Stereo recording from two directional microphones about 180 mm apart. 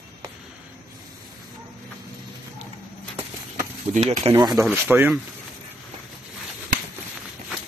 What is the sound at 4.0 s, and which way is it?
Speech, 35° right (ahead or behind).